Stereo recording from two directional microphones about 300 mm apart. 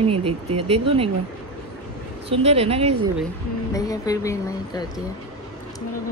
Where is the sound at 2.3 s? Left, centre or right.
Centre.